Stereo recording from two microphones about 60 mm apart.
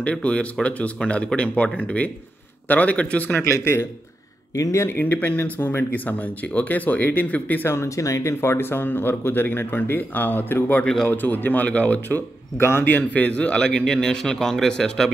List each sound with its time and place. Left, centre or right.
0.0 s speech: centre
3.4 s speech: left
4.6 s speech: left
4.8 s speech: left
7.7 s speech: left
12.5 s speech: left
12.9 s a man's voice: left; by 15.0 s centre